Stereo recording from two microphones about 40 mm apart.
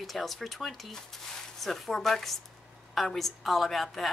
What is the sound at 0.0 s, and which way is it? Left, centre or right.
A woman's voice, centre.